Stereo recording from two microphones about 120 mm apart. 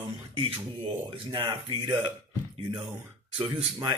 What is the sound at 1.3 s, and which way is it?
Speech, 45° right (ahead or behind).